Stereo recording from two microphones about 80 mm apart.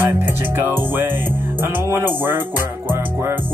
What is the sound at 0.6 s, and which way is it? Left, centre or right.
Music, right.